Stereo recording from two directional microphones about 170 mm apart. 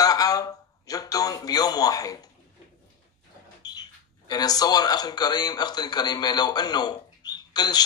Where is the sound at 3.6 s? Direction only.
25° left (ahead or behind).